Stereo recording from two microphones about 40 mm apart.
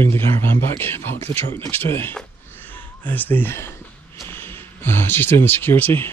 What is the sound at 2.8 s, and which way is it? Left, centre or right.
Speech, left.